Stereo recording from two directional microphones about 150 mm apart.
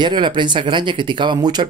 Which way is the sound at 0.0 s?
30° right (ahead or behind).